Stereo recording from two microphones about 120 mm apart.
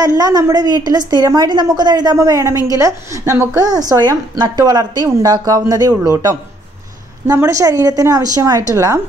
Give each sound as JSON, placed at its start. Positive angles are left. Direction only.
{"t": 0.2, "sound": "a woman's voice", "side_deg": -30}
{"t": 7.3, "sound": "a woman's voice", "side_deg": -25}